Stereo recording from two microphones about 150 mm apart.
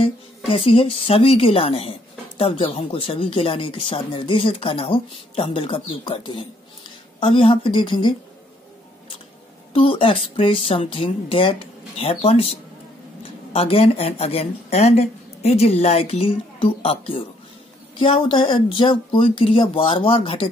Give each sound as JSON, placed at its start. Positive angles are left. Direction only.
{"t": 0.0, "sound": "a woman's voice", "side_deg": 40}
{"t": 9.8, "sound": "a woman's voice", "side_deg": 35}